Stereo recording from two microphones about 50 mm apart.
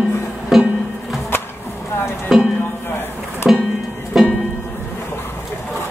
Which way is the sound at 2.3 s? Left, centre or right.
Centre.